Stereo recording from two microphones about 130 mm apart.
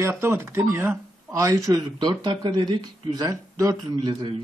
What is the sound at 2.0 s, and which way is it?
Speech, 35° right (ahead or behind).